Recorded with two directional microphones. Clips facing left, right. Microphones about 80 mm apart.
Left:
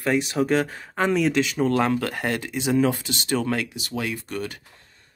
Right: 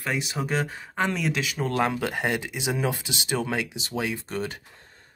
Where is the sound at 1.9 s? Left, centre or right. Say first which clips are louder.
Left 1 dB; centre.